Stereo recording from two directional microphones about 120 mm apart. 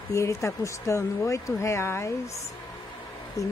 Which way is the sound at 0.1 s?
25° left (ahead or behind).